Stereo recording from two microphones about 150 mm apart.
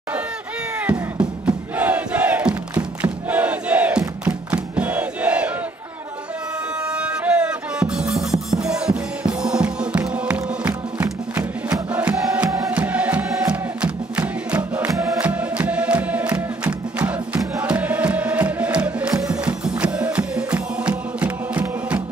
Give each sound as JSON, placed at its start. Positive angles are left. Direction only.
{"t": 1.8, "sound": "crowd", "side_deg": -10}
{"t": 4.2, "sound": "music", "side_deg": -10}
{"t": 7.0, "sound": "music", "side_deg": -5}
{"t": 12.4, "sound": "music", "side_deg": -20}
{"t": 12.7, "sound": "music", "side_deg": -10}